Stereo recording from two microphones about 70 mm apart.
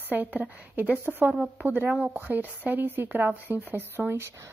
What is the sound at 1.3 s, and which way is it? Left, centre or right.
Speech, centre.